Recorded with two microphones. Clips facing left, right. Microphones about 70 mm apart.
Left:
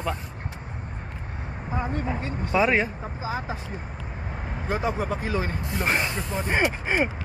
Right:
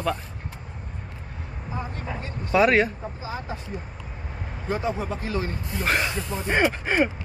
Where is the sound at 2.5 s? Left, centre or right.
Centre.